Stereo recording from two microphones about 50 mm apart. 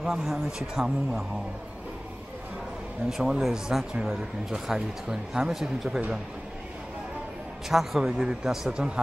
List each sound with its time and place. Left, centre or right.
0.0 s speech: centre
3.1 s speech: centre
7.7 s speech: centre